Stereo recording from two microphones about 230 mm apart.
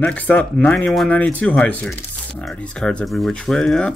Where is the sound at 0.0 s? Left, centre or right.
Centre.